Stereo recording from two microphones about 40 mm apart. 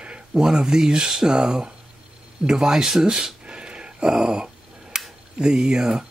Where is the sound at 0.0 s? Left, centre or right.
Right.